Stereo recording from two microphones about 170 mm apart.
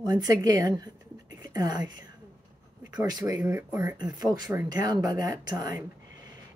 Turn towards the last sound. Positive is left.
turn(degrees=-25)  # may be behind; listen again after turning